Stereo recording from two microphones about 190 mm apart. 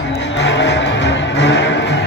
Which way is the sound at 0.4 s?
65° left (ahead or behind).